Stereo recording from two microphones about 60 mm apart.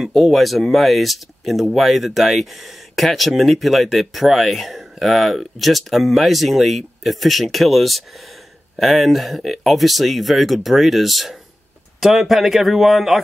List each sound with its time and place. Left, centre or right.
0.0 s speech: centre